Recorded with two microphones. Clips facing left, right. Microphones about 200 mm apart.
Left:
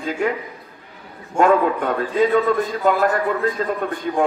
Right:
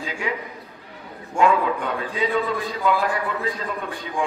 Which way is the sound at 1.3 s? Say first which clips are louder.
Left 4 dB; 50° left (ahead or behind).